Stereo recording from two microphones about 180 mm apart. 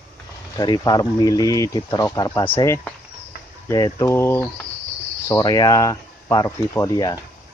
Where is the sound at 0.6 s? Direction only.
20° left (ahead or behind).